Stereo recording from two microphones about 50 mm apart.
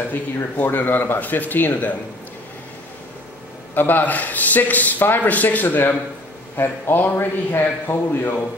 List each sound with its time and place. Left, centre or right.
0.1 s speech: left
3.7 s speech: left
6.5 s a man's voice: left